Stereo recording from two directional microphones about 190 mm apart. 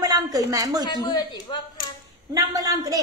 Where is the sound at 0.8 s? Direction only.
25° left (ahead or behind).